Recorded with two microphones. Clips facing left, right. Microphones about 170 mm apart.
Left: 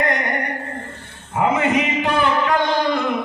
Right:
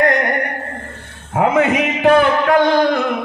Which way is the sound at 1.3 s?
55° right (ahead or behind).